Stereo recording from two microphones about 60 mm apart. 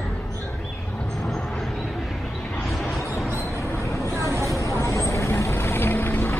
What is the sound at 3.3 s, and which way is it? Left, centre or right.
Vehicle, left.